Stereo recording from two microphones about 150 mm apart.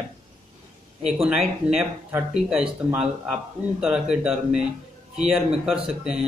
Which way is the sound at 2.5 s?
5° right (ahead or behind).